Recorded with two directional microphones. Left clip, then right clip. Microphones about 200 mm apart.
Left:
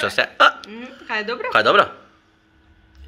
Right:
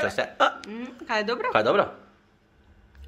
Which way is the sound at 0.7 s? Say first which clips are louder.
Left 2 dB; 60° right (ahead or behind).